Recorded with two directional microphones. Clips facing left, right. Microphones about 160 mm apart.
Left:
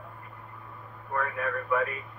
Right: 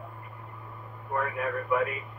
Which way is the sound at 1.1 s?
15° right (ahead or behind).